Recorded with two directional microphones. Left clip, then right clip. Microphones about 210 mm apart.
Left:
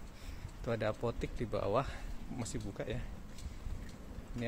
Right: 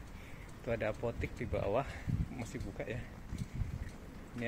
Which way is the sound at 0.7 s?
15° left (ahead or behind).